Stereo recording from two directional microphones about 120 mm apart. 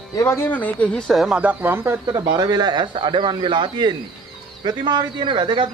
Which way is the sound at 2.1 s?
30° right (ahead or behind).